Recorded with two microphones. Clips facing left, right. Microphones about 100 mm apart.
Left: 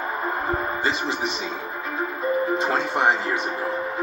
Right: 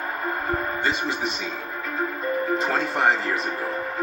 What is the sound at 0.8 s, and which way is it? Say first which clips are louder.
Speech: even; 30° left (ahead or behind).